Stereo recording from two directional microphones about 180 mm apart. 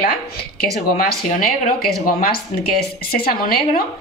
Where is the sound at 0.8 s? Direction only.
55° left (ahead or behind).